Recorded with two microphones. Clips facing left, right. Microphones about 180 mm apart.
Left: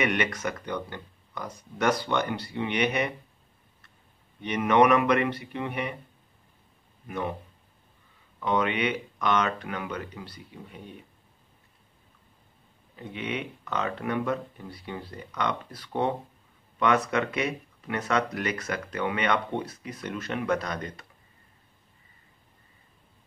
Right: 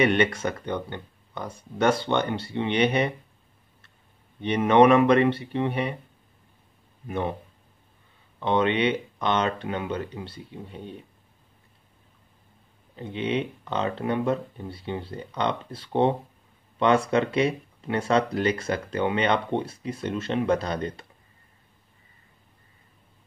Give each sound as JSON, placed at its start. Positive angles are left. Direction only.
{"t": 0.0, "sound": "speech", "side_deg": -30}
{"t": 4.4, "sound": "speech", "side_deg": -30}
{"t": 7.1, "sound": "speech", "side_deg": -30}
{"t": 8.4, "sound": "speech", "side_deg": -30}
{"t": 12.9, "sound": "speech", "side_deg": -30}